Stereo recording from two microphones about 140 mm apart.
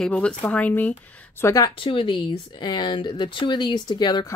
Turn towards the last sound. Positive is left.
turn(degrees=30)  # may be behind; listen again after turning